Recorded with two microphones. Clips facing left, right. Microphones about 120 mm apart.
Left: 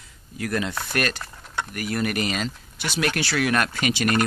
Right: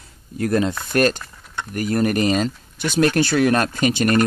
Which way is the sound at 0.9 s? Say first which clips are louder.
Right 8 dB; 35° right (ahead or behind).